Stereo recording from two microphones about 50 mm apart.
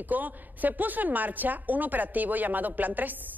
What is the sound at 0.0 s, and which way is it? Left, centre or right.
A woman's voice, right.